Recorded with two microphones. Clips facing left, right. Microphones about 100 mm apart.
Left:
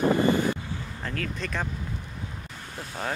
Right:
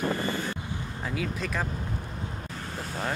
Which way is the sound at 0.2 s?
15° left (ahead or behind).